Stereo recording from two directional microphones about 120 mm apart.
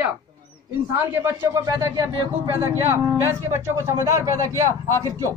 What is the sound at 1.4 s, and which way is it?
Speech, 30° right (ahead or behind).